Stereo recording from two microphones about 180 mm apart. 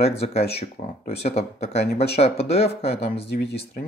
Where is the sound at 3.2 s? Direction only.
65° left (ahead or behind).